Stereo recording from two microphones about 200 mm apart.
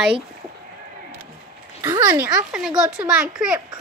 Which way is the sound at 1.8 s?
15° right (ahead or behind).